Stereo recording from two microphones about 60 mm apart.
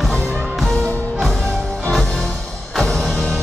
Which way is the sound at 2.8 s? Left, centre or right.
Centre.